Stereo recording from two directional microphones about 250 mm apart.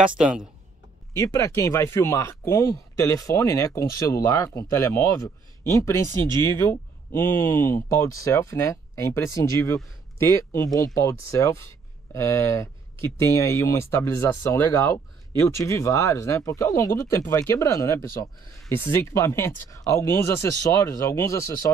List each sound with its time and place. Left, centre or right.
0.0 s speech: centre
1.1 s speech: centre